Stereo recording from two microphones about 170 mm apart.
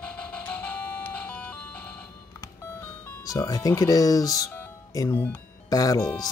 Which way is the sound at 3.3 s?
20° left (ahead or behind).